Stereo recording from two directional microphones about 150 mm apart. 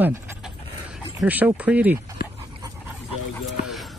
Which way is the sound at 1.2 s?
10° right (ahead or behind).